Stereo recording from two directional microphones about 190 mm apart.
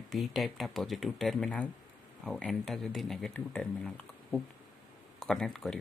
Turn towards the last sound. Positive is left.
turn(degrees=0)  # may be behind; listen again after turning